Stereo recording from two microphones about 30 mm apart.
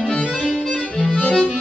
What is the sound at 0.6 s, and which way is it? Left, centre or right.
Music, left.